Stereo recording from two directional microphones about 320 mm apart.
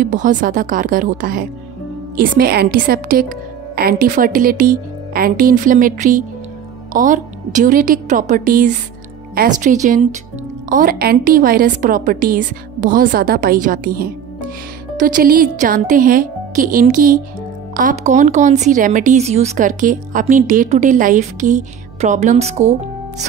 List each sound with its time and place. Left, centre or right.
0.0 s speech: right